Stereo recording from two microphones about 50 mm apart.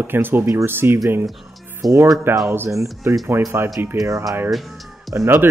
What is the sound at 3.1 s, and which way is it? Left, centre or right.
Speech, right.